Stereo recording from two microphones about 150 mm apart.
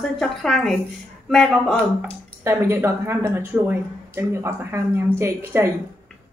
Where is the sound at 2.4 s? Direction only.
15° right (ahead or behind).